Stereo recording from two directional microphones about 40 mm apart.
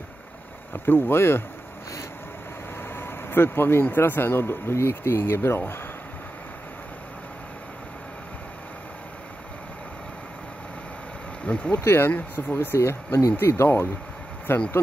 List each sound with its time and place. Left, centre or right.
0.7 s speech: left
2.9 s vehicle: left
3.8 s speech: left
11.4 s speech: left
11.8 s speech: left
12.2 s speech: left
12.5 s speech: left
14.5 s speech: left